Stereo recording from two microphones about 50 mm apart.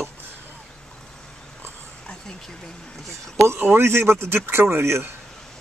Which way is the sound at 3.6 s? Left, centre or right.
Right.